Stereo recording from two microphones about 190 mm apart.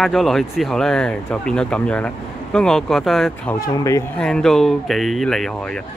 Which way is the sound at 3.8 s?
15° left (ahead or behind).